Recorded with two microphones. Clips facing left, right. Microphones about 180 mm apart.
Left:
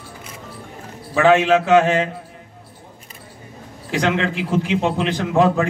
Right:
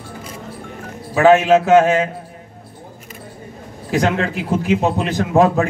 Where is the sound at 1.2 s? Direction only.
45° right (ahead or behind).